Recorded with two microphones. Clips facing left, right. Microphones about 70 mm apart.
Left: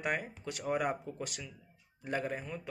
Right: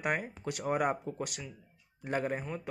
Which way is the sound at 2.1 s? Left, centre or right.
Right.